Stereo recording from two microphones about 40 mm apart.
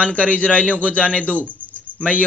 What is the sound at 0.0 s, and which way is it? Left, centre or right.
A man's voice, left.